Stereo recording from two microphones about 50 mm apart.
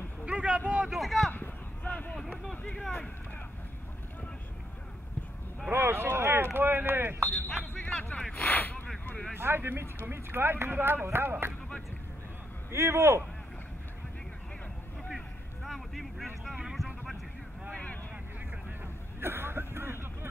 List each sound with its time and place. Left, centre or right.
0.2 s a sound: right
0.9 s speech: centre
1.3 s a sound: left
5.7 s speech: right
7.6 s a sound: left
9.4 s speech: right
12.7 s speech: right
15.0 s vehicle: centre
19.1 s speech: right
19.7 s vehicle: right